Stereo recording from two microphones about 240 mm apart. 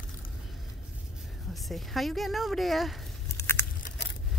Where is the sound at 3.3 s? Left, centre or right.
Centre.